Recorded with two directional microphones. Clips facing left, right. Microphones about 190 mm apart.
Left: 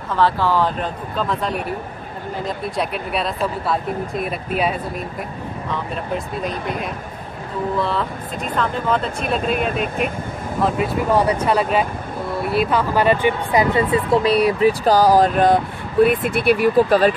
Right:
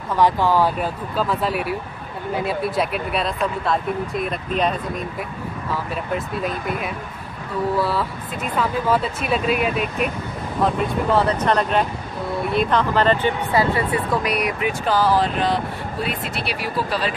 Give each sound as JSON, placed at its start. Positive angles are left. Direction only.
{"t": 0.1, "sound": "speech", "side_deg": -15}
{"t": 7.8, "sound": "speech", "side_deg": -5}